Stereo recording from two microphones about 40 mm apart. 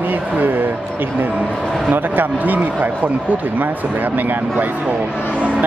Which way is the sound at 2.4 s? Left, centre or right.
Right.